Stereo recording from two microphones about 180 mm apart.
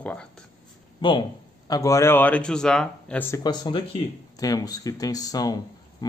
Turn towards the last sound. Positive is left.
turn(degrees=20)  # may be behind; listen again after turning